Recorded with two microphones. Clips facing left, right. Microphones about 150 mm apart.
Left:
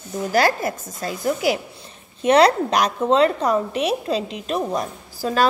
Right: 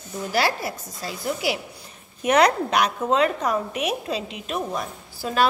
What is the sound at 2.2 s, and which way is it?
A woman's voice, 30° left (ahead or behind).